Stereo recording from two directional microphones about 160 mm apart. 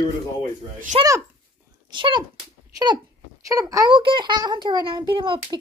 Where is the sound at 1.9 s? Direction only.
30° right (ahead or behind).